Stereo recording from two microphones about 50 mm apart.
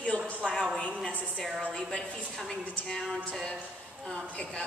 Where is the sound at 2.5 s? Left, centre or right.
Centre.